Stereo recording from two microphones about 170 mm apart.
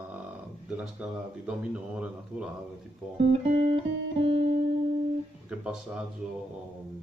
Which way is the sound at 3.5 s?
40° right (ahead or behind).